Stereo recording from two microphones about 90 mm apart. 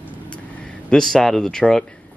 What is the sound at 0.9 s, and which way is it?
Speech, 5° left (ahead or behind).